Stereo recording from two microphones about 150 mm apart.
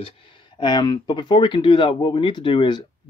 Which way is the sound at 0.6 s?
30° left (ahead or behind).